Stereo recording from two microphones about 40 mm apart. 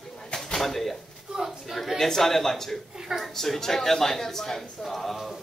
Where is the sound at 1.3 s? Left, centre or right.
Centre.